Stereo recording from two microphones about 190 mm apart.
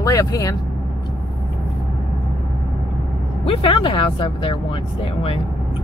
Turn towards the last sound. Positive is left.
turn(degrees=30)  # may be behind; listen again after turning